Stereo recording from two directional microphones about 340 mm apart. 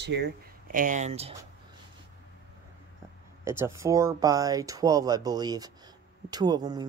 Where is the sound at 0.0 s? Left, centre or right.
Right.